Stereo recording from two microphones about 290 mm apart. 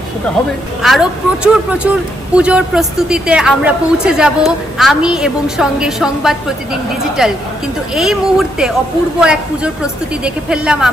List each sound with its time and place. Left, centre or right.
0.8 s speech: centre